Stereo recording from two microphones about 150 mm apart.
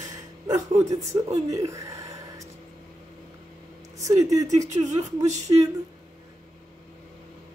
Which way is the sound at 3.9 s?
20° right (ahead or behind).